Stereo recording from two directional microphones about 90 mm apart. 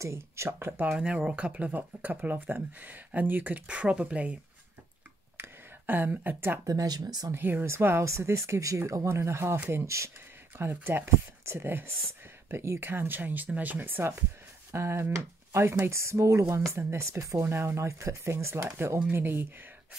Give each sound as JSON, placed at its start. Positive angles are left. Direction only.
{"t": 0.0, "sound": "speech", "side_deg": -30}
{"t": 0.9, "sound": "speech", "side_deg": -10}
{"t": 5.4, "sound": "a sound", "side_deg": -20}
{"t": 6.6, "sound": "speech", "side_deg": -40}
{"t": 7.3, "sound": "speech", "side_deg": -25}